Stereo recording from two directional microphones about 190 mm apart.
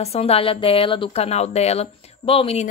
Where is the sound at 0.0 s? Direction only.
30° left (ahead or behind).